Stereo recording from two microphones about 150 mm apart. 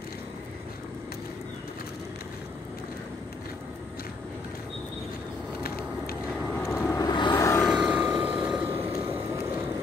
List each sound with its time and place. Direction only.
6.6 s vehicle: 15° left (ahead or behind)
7.6 s vehicle: 5° right (ahead or behind)